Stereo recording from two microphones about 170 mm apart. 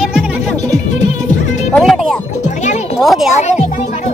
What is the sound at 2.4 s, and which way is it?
Music, 45° left (ahead or behind).